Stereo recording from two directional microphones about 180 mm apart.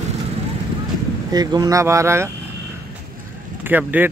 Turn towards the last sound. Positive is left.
turn(degrees=-10)  # may be behind; listen again after turning